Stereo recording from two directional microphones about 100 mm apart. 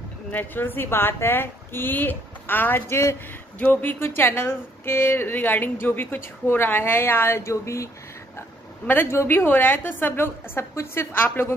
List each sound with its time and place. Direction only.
0.3 s a woman's voice: 20° left (ahead or behind)